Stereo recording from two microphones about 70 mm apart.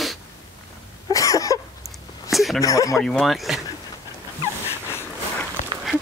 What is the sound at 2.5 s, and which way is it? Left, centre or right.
Speech, left.